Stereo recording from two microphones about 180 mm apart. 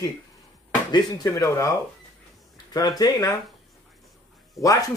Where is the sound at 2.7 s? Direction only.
20° left (ahead or behind).